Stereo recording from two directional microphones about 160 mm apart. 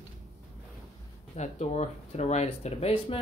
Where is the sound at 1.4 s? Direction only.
45° left (ahead or behind).